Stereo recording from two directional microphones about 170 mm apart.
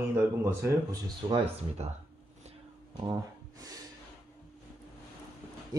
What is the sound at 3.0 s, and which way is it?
Speech, 20° right (ahead or behind).